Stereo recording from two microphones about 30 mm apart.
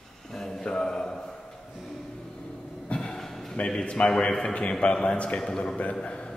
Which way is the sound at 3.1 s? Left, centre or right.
Centre.